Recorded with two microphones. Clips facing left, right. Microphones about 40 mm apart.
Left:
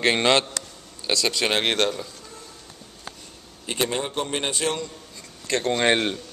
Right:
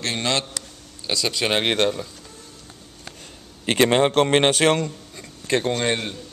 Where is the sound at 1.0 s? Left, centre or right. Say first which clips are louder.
Even; centre.